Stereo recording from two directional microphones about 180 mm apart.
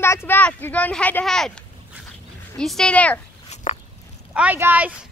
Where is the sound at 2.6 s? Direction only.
5° left (ahead or behind).